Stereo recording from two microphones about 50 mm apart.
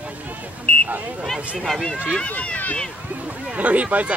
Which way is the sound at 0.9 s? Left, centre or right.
Right.